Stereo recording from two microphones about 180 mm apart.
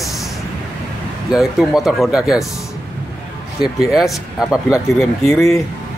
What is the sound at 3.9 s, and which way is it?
Speech, 5° right (ahead or behind).